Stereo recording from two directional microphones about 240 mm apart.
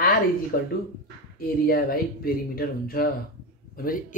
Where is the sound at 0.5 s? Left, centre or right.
Left.